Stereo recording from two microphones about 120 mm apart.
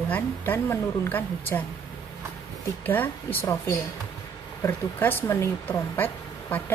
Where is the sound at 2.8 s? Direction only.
15° left (ahead or behind).